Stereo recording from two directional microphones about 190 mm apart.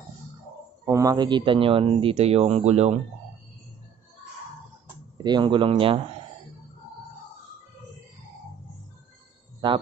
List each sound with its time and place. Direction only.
0.8 s speech: 15° right (ahead or behind); by 3.0 s 35° right (ahead or behind)
5.1 s speech: 25° right (ahead or behind)